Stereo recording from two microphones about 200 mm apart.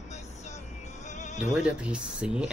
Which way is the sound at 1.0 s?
35° left (ahead or behind).